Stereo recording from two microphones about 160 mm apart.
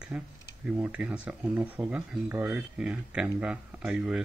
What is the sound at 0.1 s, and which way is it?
Speech, 5° right (ahead or behind).